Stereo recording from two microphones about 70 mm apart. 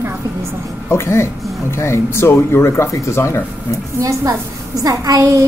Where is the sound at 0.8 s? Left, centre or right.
Left.